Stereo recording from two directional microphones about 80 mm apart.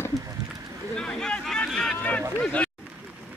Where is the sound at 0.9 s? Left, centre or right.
Centre.